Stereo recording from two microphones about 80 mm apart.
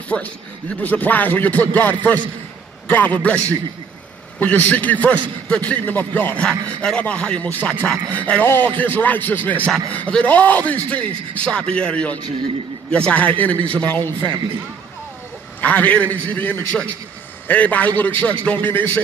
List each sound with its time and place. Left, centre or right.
0.1 s a man's voice: centre
4.4 s a man's voice: centre
15.6 s a man's voice: centre